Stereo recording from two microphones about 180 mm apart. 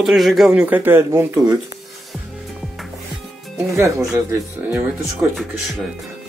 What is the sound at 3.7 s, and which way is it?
Speech, 15° right (ahead or behind).